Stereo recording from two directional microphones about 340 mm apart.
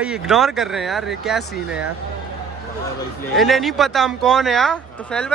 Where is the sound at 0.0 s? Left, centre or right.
Centre.